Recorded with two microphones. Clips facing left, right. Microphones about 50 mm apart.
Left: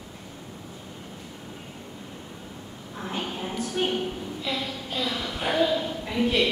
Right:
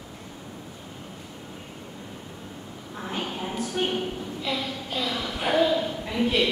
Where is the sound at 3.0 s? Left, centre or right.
Centre.